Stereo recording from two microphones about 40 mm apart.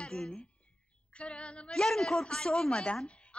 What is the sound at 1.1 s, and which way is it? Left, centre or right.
Female singing, left.